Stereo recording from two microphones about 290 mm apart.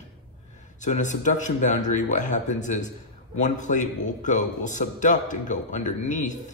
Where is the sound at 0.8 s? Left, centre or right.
Left.